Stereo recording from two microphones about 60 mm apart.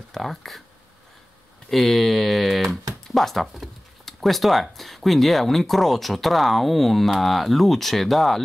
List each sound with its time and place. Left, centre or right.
0.1 s speech: centre
1.7 s speech: centre